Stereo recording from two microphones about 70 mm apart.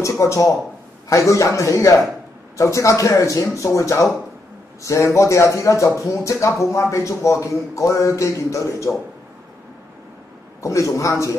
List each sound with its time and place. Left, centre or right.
0.0 s speech: left
10.6 s speech: left